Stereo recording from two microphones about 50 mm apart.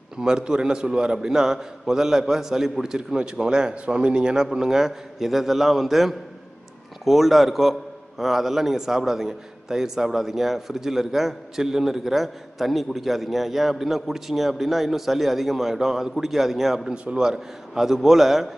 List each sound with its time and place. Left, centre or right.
0.2 s a man's voice: centre
16.9 s a man's voice: right
17.3 s a man's voice: centre